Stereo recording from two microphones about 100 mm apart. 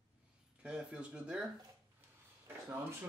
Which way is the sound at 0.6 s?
10° right (ahead or behind).